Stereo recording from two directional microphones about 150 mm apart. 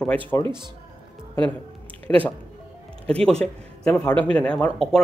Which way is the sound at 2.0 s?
10° left (ahead or behind).